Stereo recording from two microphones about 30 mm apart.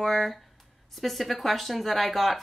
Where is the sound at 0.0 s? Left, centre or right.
Centre.